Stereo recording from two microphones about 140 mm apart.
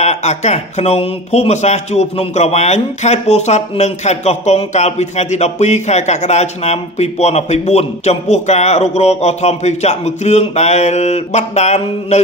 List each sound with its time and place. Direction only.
0.0 s speech: 55° left (ahead or behind)